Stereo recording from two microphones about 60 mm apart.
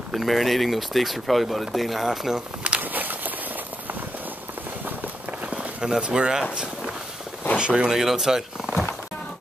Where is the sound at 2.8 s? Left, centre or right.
Right; by 6.4 s centre.